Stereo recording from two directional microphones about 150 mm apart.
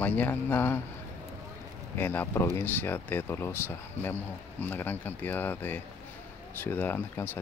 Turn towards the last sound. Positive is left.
turn(degrees=15)  # may be behind; listen again after turning